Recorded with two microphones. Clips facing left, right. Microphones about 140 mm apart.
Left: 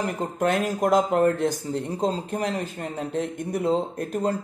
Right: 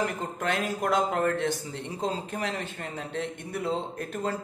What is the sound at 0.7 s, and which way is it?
Speech, 40° left (ahead or behind).